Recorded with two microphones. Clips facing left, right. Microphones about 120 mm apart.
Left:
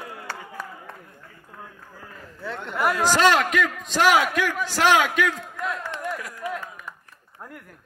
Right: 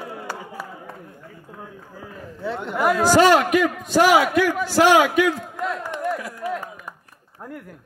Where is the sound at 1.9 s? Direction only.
5° right (ahead or behind).